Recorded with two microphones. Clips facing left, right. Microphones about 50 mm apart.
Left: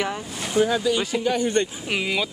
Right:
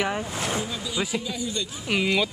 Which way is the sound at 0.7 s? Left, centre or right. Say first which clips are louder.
Left 7 dB; left.